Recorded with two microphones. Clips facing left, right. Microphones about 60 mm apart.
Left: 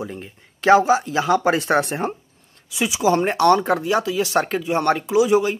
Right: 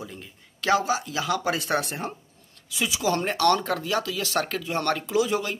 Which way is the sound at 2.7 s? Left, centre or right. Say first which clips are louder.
Left 6 dB; centre.